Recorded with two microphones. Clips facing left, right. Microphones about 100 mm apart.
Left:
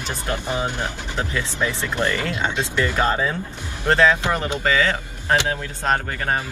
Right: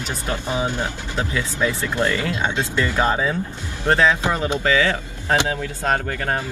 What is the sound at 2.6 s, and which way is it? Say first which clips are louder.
Speech: even; 20° left (ahead or behind).